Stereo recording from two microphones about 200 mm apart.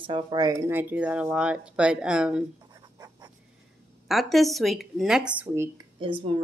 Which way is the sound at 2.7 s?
20° right (ahead or behind).